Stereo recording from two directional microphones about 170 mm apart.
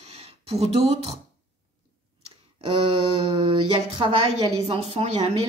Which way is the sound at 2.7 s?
30° right (ahead or behind).